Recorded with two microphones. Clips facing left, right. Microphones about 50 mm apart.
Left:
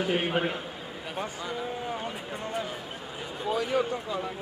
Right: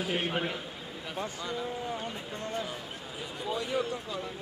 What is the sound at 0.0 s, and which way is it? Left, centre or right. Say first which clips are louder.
Speech: left 4 dB; centre.